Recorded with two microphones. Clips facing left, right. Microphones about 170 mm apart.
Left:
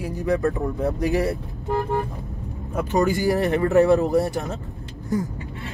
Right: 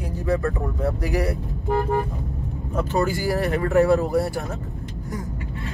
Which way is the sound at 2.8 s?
15° left (ahead or behind).